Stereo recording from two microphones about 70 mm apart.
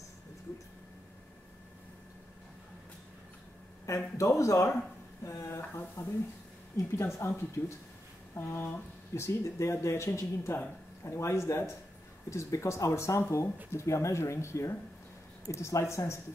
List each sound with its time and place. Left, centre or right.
3.8 s speech: left
5.2 s a sound: left
5.6 s speech: left